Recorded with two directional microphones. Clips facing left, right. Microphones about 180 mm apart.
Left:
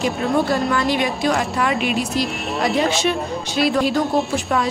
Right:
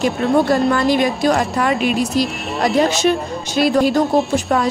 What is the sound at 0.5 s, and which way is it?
A woman's voice, 40° right (ahead or behind).